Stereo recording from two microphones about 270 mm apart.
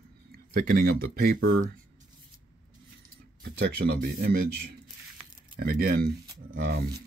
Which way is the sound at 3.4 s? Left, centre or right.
Right.